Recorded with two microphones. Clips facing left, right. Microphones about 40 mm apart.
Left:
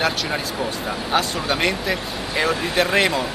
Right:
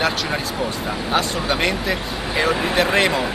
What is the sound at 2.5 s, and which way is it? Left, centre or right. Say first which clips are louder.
Speech: right 3 dB; centre.